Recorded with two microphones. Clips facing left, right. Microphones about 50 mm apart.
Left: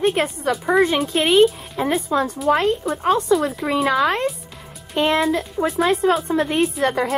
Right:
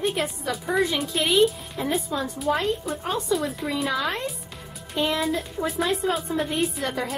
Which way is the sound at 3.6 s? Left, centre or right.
Left.